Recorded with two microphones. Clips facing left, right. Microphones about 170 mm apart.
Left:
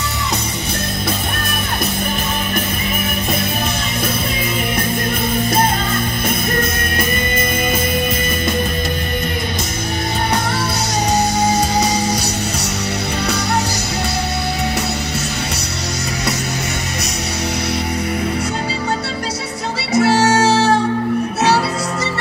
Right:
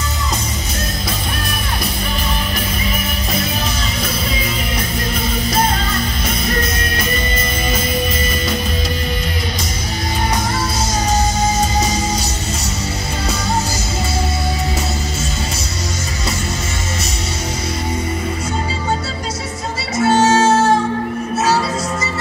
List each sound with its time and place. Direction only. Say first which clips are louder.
19.9 s music: left 1 dB; 65° left (ahead or behind)